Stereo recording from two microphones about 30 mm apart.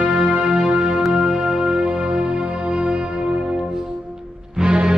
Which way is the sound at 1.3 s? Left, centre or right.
Right.